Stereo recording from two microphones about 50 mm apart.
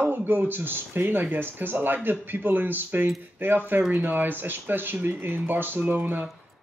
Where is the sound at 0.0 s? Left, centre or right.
Right.